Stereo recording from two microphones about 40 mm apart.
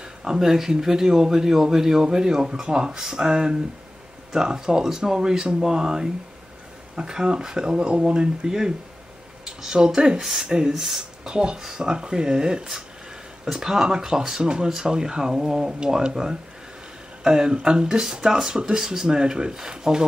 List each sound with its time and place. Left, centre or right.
0.0 s a man's voice: centre
10.7 s speech: centre
11.2 s a man's voice: centre
17.2 s a man's voice: centre